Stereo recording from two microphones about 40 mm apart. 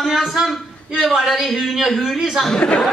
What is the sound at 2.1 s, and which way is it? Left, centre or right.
Speech, centre.